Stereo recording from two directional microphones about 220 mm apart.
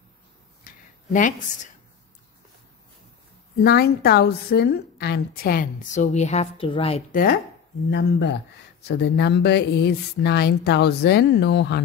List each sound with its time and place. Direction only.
0.7 s a sound: 35° left (ahead or behind)
3.6 s a woman's voice: 45° left (ahead or behind); by 7.2 s 25° left (ahead or behind)
7.9 s a woman's voice: 50° left (ahead or behind)